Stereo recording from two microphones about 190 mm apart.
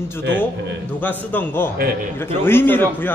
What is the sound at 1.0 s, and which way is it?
A man's voice, 10° left (ahead or behind).